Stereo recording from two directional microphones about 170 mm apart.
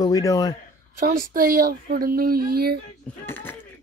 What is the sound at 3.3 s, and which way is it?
Speech, 10° left (ahead or behind).